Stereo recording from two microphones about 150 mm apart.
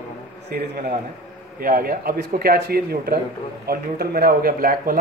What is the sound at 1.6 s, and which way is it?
A man's voice, 75° right (ahead or behind).